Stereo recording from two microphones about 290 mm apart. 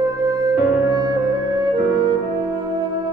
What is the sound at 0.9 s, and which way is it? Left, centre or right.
Music, centre.